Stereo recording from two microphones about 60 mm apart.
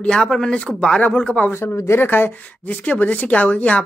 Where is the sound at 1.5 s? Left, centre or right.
Left.